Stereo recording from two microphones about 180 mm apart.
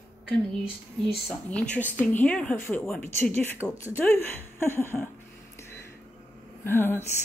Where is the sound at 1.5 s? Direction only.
5° left (ahead or behind).